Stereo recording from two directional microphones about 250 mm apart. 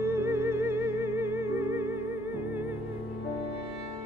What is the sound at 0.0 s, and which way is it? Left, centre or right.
Music, centre.